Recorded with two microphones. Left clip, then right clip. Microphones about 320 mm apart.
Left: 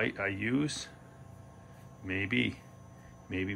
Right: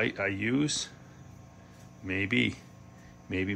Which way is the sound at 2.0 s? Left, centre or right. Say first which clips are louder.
Right 3 dB; centre.